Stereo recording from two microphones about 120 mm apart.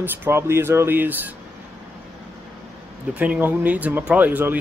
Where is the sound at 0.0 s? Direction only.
20° right (ahead or behind).